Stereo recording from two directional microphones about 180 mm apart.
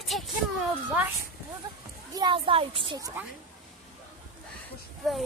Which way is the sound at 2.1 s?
25° right (ahead or behind).